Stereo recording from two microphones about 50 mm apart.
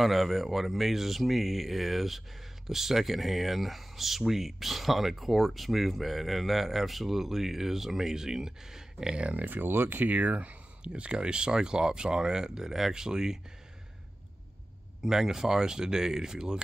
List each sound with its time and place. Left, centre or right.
0.0 s speech: centre; by 9.4 s right
9.4 s speech: right; by 13.4 s centre
15.0 s speech: centre